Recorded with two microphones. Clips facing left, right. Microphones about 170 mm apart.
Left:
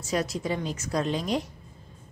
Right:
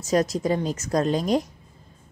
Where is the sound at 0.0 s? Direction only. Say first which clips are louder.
Right 6 dB; 40° right (ahead or behind).